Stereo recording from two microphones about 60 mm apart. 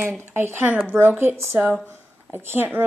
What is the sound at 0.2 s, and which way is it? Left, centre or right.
Speech, right.